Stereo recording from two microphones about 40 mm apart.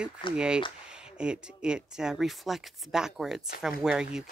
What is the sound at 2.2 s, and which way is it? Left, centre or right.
Speech, centre.